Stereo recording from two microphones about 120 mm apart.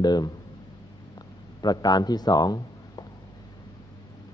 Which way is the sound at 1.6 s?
35° left (ahead or behind).